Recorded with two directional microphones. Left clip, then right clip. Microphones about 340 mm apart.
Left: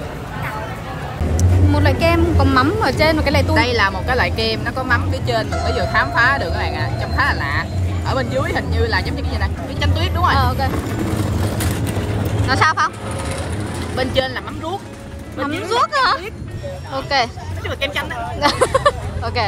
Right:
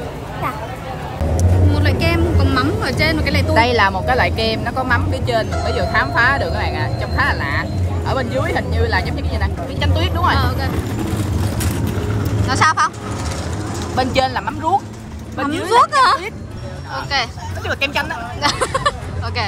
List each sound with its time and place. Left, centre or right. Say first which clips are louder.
1.7 s a sound: left 4 dB; centre
3.5 s speech: right 6 dB; centre
11.4 s vehicle: left 1 dB; centre
12.4 s speech: right 1 dB; centre
13.9 s speech: right 3 dB; centre
15.4 s speech: right 4 dB; centre
18.4 s speech: left 3 dB; centre